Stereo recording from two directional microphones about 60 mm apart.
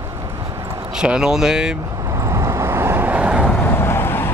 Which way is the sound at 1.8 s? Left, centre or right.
Right.